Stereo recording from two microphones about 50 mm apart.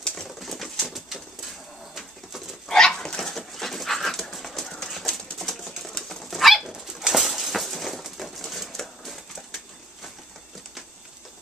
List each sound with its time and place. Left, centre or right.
0.0 s pigeon: centre
0.4 s pigeon: centre
2.7 s dog: centre